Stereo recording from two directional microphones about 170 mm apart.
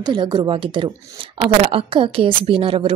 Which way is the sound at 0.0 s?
25° right (ahead or behind).